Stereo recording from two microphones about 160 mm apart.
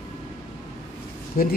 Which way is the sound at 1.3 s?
60° left (ahead or behind).